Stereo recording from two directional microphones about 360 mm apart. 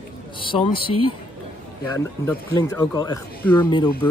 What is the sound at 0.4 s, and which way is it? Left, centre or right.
Speech, centre.